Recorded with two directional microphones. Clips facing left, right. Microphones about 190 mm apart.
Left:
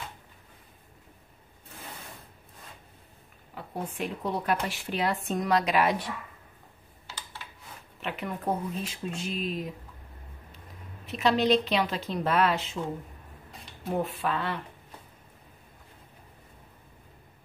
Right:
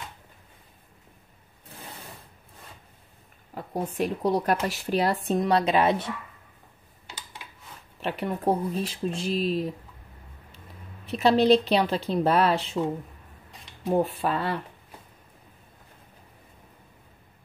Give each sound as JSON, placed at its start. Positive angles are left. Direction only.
{"t": 3.5, "sound": "a woman's voice", "side_deg": -40}
{"t": 7.1, "sound": "computer keyboard", "side_deg": -15}
{"t": 8.0, "sound": "speech", "side_deg": -35}
{"t": 11.1, "sound": "speech", "side_deg": -35}
{"t": 14.2, "sound": "speech", "side_deg": -40}